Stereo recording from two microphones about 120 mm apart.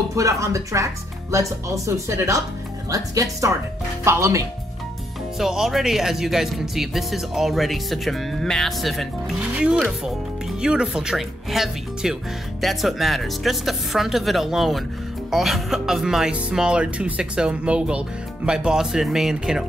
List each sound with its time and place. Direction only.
0.1 s speech: 25° right (ahead or behind)
1.9 s speech: 25° right (ahead or behind)
5.4 s speech: 5° right (ahead or behind)